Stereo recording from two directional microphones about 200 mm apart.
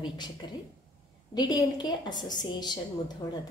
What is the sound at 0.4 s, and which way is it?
A woman's voice, 20° left (ahead or behind).